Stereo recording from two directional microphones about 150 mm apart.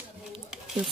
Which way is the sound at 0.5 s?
Centre (ahead or behind).